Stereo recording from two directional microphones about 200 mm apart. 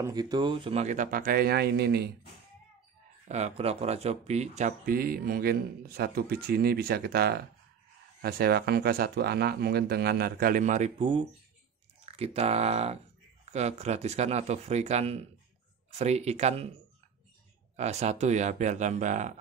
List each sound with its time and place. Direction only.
0.0 s speech: 20° right (ahead or behind); by 2.0 s 50° right (ahead or behind)
3.3 s speech: 35° right (ahead or behind)
11.0 s speech: 25° right (ahead or behind)
17.7 s speech: 35° right (ahead or behind)